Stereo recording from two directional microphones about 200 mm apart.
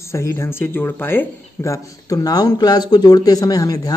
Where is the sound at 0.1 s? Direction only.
15° left (ahead or behind).